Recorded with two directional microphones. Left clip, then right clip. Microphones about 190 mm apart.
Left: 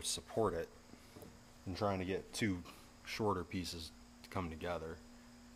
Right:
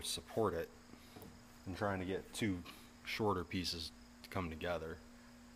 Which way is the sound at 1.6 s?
20° left (ahead or behind).